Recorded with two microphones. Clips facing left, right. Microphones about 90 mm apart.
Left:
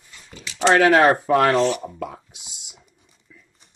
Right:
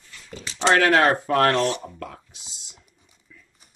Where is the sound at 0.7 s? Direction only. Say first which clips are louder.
Left 3 dB; 5° left (ahead or behind).